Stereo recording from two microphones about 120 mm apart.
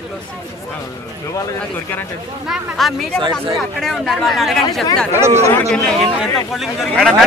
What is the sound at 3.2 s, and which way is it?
Speech, 45° right (ahead or behind).